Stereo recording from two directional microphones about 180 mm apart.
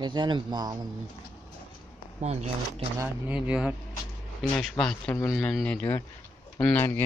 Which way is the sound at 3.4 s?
5° right (ahead or behind).